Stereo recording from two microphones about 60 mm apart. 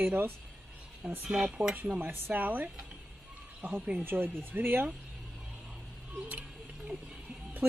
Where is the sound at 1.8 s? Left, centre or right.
Right.